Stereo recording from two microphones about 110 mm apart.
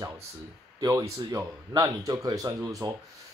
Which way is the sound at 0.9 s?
30° right (ahead or behind).